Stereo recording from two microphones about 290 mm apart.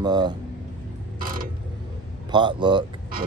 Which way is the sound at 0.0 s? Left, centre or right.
Centre.